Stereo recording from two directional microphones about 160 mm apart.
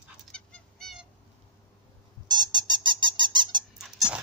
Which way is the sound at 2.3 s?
30° right (ahead or behind).